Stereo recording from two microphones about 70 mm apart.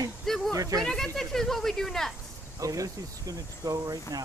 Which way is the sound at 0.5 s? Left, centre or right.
Right.